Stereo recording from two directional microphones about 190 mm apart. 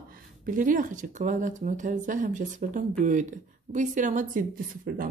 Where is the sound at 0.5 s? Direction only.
45° right (ahead or behind).